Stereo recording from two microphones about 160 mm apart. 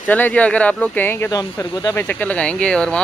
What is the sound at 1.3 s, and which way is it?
Speech, 25° left (ahead or behind).